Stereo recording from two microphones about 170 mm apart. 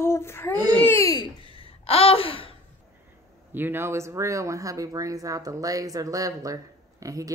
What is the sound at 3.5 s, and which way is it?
Speech, 10° right (ahead or behind).